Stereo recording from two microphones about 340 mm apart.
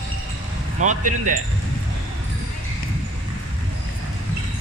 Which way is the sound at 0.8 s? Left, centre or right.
Right.